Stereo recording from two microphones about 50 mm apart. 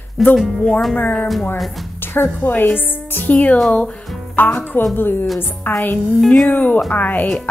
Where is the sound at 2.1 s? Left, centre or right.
Left.